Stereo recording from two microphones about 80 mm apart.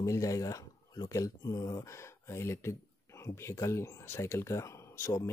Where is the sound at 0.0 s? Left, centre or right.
Left.